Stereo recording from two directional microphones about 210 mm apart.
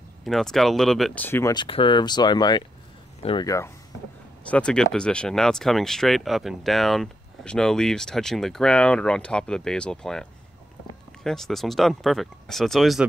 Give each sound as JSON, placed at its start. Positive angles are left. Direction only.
{"t": 0.2, "sound": "speech", "side_deg": 0}
{"t": 11.2, "sound": "speech", "side_deg": 0}